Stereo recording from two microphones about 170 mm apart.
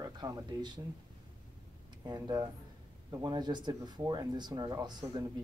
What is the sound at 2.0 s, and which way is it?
Speech, 25° right (ahead or behind).